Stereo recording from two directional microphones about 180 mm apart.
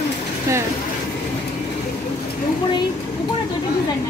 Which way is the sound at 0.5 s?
15° right (ahead or behind).